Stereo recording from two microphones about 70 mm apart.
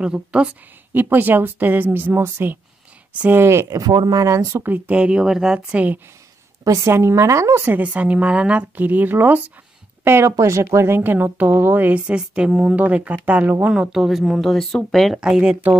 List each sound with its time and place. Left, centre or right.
0.0 s speech: centre
0.9 s a woman's voice: right
3.8 s speech: right
4.6 s speech: right
6.6 s a woman's voice: right
6.9 s speech: right
7.6 s a woman's voice: right
10.3 s speech: right
10.9 s a woman's voice: right
12.1 s a woman's voice: centre
13.7 s speech: centre
15.1 s speech: centre